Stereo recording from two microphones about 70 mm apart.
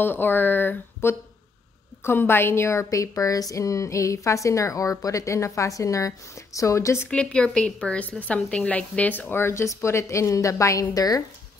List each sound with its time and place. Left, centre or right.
0.0 s a woman's voice: left
7.1 s a woman's voice: centre; by 11.2 s left